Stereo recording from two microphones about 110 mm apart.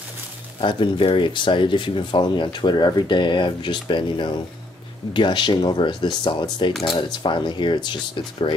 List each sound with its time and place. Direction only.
0.6 s speech: 50° left (ahead or behind)